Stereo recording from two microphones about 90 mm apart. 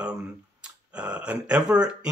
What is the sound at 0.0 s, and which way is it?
Speech, 10° right (ahead or behind).